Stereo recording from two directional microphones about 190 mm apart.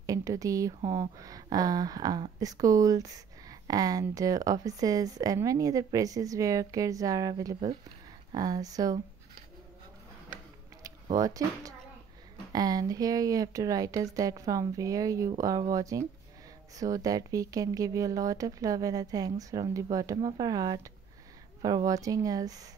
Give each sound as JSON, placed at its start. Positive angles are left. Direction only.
{"t": 0.0, "sound": "speech", "side_deg": -15}
{"t": 10.3, "sound": "a sound", "side_deg": -15}
{"t": 12.5, "sound": "speech", "side_deg": -20}